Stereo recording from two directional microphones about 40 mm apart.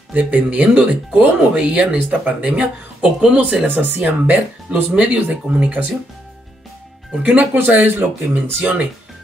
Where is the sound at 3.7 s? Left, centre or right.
Right.